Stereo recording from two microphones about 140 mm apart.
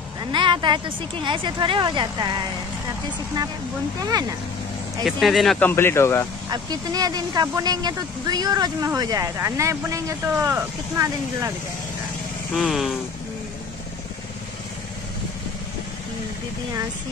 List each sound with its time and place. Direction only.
0.3 s speech: 35° right (ahead or behind)
5.0 s speech: centre (ahead or behind)
5.6 s speech: 15° left (ahead or behind)
6.5 s speech: 30° right (ahead or behind)
12.5 s speech: centre (ahead or behind)